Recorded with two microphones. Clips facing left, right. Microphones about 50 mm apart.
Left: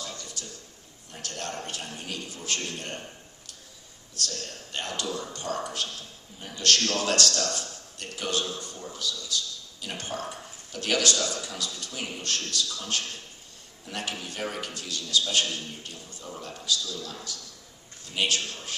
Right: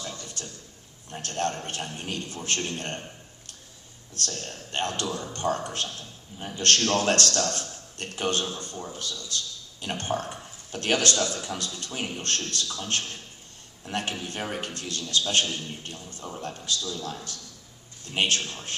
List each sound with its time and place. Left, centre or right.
0.2 s a sound: right
1.2 s a man's voice: right
4.2 s a man's voice: right